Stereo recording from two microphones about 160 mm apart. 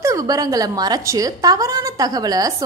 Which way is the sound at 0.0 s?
20° right (ahead or behind).